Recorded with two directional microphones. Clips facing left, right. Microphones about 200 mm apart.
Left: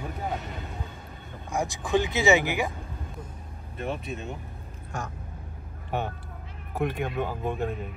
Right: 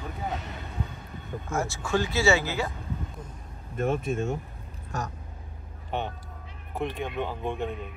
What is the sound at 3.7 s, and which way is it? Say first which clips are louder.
Speech: right 6 dB; 50° right (ahead or behind).